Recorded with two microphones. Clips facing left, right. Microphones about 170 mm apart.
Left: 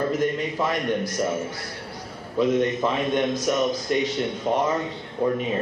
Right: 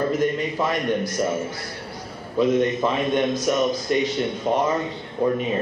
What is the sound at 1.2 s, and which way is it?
A man's voice, 20° right (ahead or behind).